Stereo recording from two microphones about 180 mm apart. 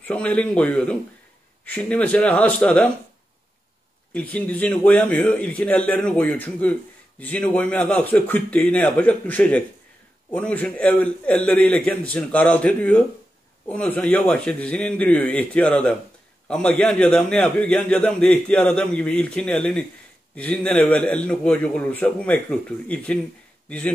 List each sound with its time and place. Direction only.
0.0 s a man's voice: 5° left (ahead or behind)
4.1 s a man's voice: 5° left (ahead or behind)